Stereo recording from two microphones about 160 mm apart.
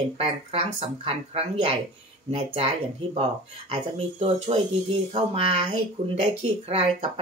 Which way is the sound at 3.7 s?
35° right (ahead or behind).